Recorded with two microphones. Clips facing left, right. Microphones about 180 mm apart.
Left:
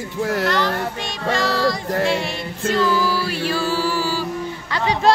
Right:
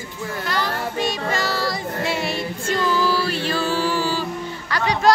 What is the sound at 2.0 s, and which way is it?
Music, 5° right (ahead or behind).